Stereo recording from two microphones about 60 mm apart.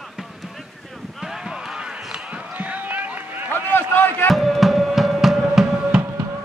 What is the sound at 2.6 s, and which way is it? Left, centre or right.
Rowboat, right.